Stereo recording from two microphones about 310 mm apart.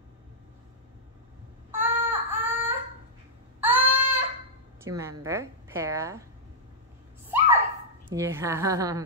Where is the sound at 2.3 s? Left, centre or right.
Centre.